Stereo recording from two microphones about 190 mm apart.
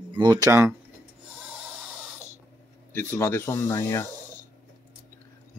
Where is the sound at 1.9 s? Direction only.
Centre (ahead or behind).